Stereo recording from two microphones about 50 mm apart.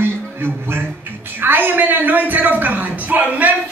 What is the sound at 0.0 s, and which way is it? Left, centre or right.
Music, right.